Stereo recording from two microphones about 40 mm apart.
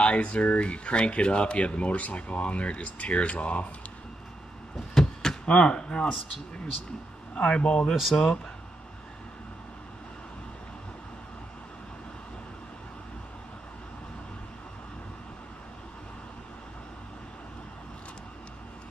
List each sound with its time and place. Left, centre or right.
0.0 s speech: left
4.9 s a sound: centre
5.4 s speech: left
7.3 s speech: left
7.9 s speech: centre